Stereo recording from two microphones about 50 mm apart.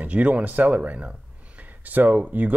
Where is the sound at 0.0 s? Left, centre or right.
Right.